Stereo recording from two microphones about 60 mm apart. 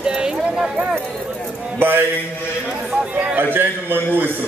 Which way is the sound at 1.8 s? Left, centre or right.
Right.